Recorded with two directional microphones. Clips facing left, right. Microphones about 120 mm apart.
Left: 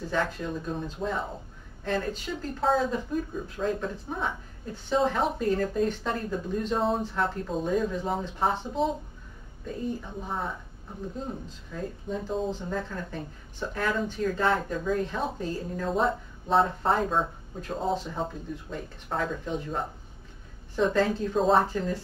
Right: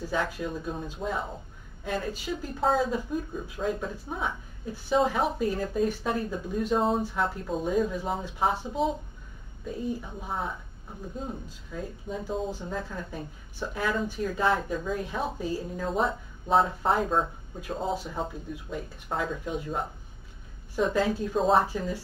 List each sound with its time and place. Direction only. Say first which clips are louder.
0.0 s speech: left 1 dB; 10° right (ahead or behind)